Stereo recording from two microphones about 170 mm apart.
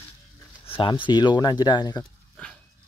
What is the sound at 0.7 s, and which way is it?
Speech, 30° left (ahead or behind).